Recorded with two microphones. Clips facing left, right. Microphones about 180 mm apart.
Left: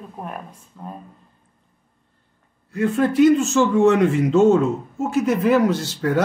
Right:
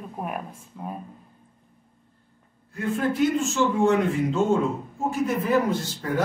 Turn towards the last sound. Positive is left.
turn(degrees=90)